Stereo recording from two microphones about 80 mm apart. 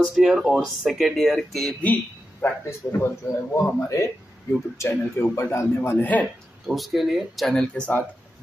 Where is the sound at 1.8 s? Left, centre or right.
Centre.